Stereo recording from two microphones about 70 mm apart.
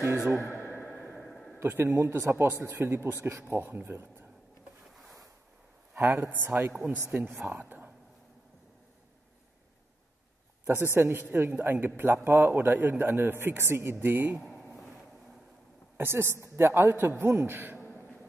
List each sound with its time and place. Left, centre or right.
1.1 s a sound: centre
1.6 s a man's voice: right
5.9 s a man's voice: right
6.9 s speech: right
7.2 s a man's voice: right
7.5 s whispering: right
10.7 s a man's voice: right
14.4 s a sound: centre
16.0 s a man's voice: right
17.8 s beatboxing: centre